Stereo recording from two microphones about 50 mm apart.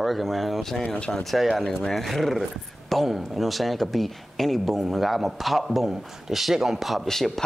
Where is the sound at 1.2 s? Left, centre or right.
Centre.